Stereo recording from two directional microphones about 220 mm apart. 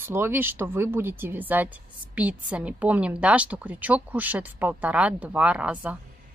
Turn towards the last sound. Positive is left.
turn(degrees=-5)  # may be behind; listen again after turning